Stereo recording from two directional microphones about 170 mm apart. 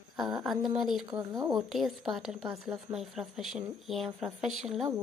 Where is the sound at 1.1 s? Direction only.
25° right (ahead or behind).